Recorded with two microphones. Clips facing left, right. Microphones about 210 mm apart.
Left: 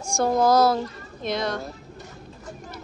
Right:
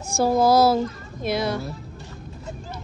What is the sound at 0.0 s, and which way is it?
Speech, 5° right (ahead or behind).